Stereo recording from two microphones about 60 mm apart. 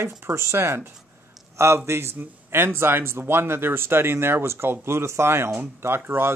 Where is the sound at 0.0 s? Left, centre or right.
Right.